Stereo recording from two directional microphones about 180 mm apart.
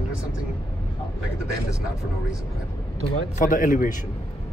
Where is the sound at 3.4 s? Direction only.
50° left (ahead or behind).